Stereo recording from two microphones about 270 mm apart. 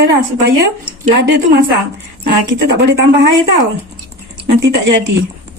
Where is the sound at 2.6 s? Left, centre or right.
Right.